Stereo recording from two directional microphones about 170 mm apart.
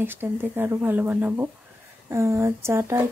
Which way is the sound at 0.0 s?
15° right (ahead or behind).